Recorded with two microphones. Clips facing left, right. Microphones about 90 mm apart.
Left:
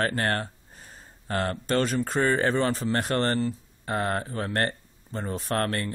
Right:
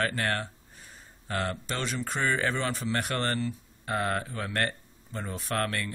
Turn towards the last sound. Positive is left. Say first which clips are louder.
# left 3 dB
turn(degrees=40)  # may be behind; listen again after turning